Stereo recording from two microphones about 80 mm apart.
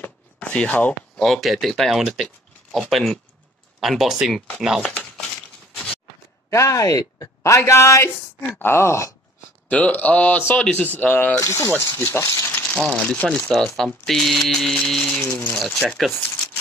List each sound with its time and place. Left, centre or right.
0.0 s a sound: centre
1.1 s speech: centre
6.5 s a woman's voice: left
9.7 s speech: centre
11.3 s a woman's voice: left
12.2 s a sound: left
12.7 s speech: centre
15.2 s speech: left
15.6 s speech: centre
16.1 s speech: left